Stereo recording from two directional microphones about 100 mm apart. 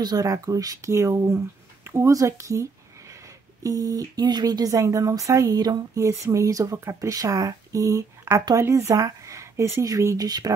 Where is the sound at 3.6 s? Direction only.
35° right (ahead or behind).